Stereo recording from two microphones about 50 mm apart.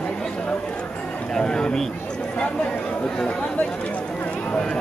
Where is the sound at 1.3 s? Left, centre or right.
Centre.